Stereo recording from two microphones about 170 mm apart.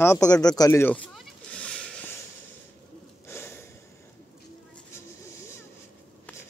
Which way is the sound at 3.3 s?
15° left (ahead or behind).